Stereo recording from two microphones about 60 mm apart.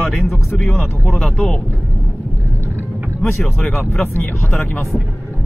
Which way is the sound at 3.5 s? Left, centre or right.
Left.